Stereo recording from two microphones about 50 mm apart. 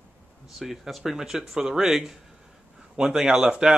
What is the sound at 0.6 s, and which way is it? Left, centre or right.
Speech, centre.